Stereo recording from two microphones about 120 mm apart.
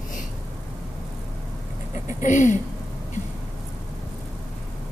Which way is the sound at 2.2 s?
90° left.